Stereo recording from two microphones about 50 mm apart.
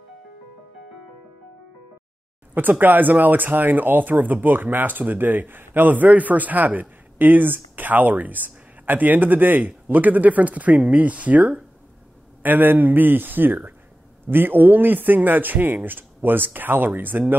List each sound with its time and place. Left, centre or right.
2.5 s speech: right
12.4 s speech: right